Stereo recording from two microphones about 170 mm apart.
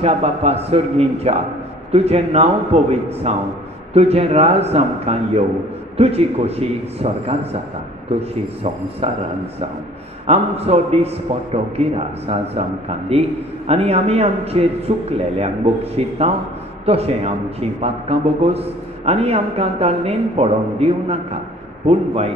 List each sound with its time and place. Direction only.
0.0 s a man's voice: 40° right (ahead or behind)
9.0 s a man's voice: 35° right (ahead or behind)
10.2 s a man's voice: 40° right (ahead or behind)